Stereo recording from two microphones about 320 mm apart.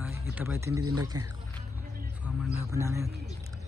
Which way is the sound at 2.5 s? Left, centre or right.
Centre.